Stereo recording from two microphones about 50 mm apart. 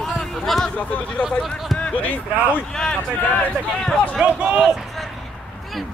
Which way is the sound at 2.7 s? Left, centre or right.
Centre.